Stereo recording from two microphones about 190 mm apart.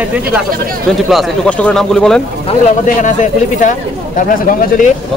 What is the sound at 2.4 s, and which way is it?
Speech, 40° left (ahead or behind).